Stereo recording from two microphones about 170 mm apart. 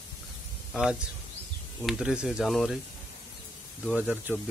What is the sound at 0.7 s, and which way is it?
Speech, 5° right (ahead or behind).